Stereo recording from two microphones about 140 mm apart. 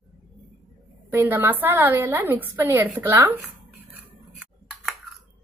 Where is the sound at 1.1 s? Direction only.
15° right (ahead or behind).